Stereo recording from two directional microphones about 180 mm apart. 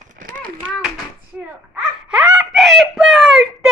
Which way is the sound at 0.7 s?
5° right (ahead or behind).